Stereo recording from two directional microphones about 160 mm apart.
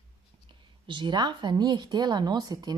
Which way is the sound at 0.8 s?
30° right (ahead or behind).